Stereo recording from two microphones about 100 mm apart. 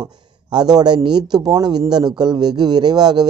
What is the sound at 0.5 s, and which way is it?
A man's voice, 45° right (ahead or behind).